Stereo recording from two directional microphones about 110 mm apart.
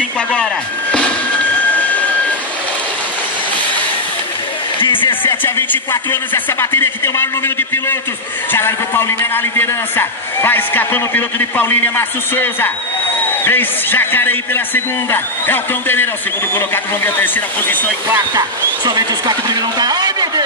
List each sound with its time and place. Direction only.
4.7 s a sound: 50° left (ahead or behind)
5.4 s a man's voice: 20° left (ahead or behind)
18.9 s speech: 40° right (ahead or behind)